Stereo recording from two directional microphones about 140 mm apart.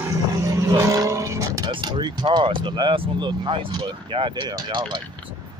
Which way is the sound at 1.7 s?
35° right (ahead or behind).